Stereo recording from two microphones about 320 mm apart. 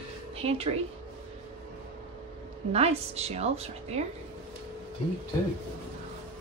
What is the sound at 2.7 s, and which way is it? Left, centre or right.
A woman's voice, centre.